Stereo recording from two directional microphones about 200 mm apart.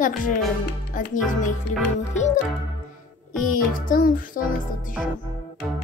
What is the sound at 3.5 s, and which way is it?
A child's voice, 45° left (ahead or behind).